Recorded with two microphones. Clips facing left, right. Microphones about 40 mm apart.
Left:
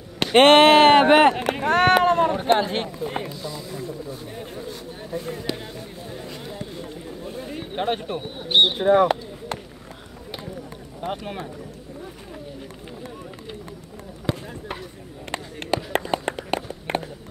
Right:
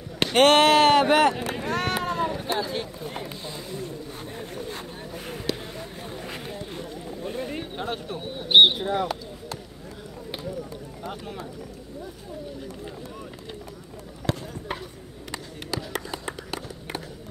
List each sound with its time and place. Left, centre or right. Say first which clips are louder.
0.3 s speech: left 5 dB; left
1.4 s run: left 8 dB; left
2.2 s speech: left 8 dB; left
3.3 s speech: left 3 dB; right
3.8 s a sound: left 3 dB; right
4.6 s vehicle: left 1 dB; right
6.2 s a sound: left 1 dB; right
7.7 s speech: left 6 dB; left
8.5 s speech: right 3 dB; centre
8.7 s speech: left 9 dB; left
11.0 s speech: left 7 dB; left
14.3 s basketball bounce: left 1 dB; centre
15.3 s a sound: left 7 dB; left